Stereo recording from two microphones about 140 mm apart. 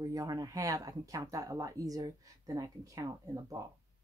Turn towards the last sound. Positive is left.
turn(degrees=-25)  # may be behind; listen again after turning